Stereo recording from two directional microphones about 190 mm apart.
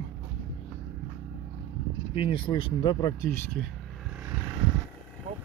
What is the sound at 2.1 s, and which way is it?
Speech, 30° left (ahead or behind).